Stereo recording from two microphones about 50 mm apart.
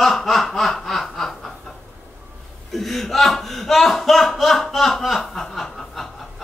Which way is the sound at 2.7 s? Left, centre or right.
Centre.